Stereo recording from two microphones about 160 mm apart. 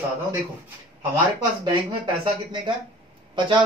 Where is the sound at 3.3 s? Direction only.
30° right (ahead or behind).